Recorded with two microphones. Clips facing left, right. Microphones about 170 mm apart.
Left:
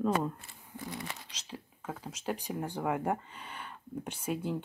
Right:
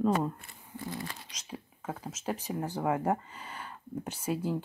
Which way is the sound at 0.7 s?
20° left (ahead or behind).